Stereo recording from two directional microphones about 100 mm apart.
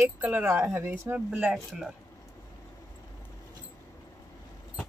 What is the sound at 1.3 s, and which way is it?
Speech, 10° right (ahead or behind).